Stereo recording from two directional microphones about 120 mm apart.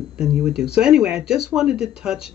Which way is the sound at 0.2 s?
10° right (ahead or behind).